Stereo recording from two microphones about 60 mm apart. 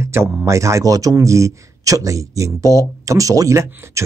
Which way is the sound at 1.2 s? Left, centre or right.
Right.